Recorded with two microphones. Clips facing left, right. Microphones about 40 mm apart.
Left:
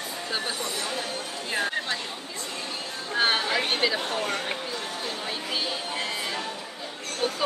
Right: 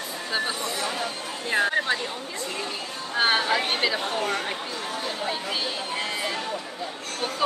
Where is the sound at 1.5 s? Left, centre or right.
Centre.